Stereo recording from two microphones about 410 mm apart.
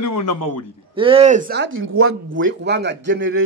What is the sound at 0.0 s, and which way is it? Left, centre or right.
Speech, left.